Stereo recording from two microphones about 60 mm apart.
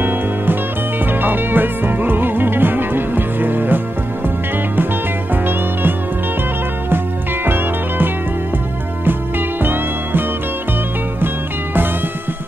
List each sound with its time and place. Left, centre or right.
0.0 s music: right
5.3 s music: right
7.4 s music: right
9.6 s music: right